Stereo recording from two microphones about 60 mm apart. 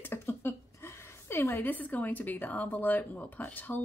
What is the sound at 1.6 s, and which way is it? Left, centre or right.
Speech, left.